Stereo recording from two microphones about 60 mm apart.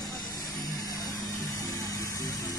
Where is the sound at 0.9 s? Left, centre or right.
Left.